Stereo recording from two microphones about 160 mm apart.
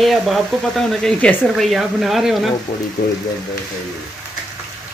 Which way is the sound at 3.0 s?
60° left (ahead or behind).